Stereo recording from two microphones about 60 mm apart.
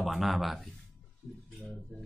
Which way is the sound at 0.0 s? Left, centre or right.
Centre.